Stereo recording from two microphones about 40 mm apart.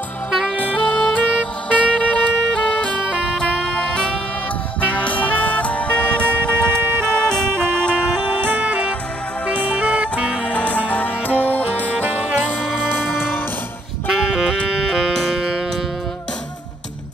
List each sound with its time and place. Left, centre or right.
0.8 s music: left
4.8 s music: left
8.5 s music: right
9.5 s music: left
11.9 s music: right
12.4 s music: left
14.0 s music: centre